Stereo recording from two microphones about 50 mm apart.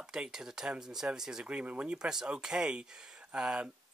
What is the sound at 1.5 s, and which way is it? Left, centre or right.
Speech, right.